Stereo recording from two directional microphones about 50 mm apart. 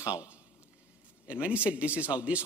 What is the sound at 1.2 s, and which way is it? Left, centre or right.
A man's voice, right.